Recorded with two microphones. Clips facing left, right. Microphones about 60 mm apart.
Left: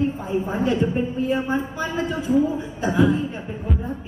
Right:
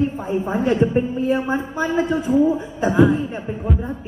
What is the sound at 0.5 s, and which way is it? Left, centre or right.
Speech, right.